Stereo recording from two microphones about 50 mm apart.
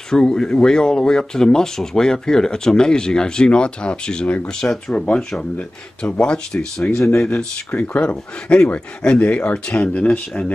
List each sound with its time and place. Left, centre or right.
0.1 s speech: centre
7.7 s speech: left
8.5 s speech: left